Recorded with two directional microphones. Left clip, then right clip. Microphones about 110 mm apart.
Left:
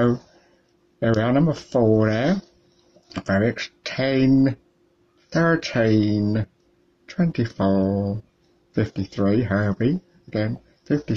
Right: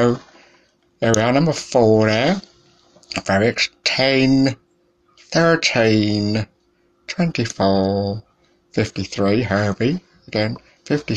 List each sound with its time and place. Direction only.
0.9 s speech: 25° left (ahead or behind)
5.3 s speech: 30° left (ahead or behind)
7.9 s speech: centre (ahead or behind)
8.7 s speech: 30° left (ahead or behind)